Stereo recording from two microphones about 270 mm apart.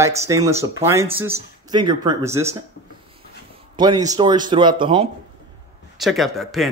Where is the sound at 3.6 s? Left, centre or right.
Centre.